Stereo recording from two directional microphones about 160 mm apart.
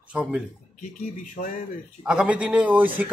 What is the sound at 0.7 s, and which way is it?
Speech, 50° left (ahead or behind).